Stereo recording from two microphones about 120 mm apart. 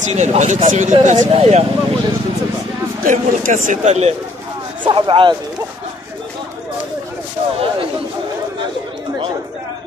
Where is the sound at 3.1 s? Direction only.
90° right; by 4.1 s 70° right (ahead or behind).